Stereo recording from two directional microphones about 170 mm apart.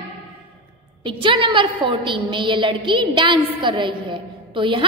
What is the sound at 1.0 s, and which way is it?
A woman's voice, 30° right (ahead or behind).